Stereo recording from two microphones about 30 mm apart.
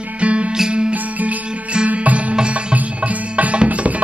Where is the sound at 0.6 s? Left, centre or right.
Right.